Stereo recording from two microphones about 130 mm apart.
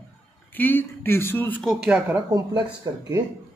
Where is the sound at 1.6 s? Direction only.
Centre (ahead or behind).